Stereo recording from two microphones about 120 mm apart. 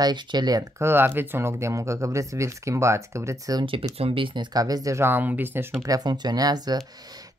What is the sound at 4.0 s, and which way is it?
Speech, 50° right (ahead or behind).